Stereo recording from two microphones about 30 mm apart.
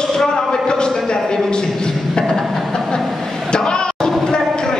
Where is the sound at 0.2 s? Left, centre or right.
Left.